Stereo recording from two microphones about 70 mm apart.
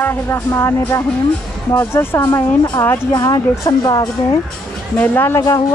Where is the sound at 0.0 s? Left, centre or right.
Left.